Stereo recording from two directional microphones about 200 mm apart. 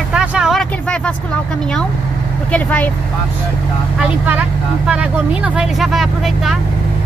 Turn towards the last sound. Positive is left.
turn(degrees=0)  # may be behind; listen again after turning